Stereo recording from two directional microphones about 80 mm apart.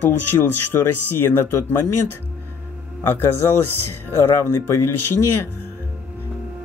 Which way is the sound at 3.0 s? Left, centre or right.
Left.